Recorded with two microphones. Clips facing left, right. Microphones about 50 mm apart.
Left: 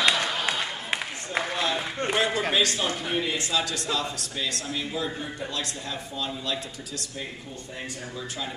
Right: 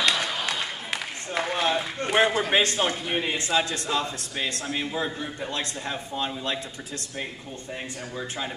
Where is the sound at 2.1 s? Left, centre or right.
Right.